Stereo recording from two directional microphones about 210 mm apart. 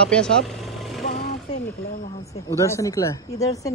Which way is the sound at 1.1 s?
40° left (ahead or behind).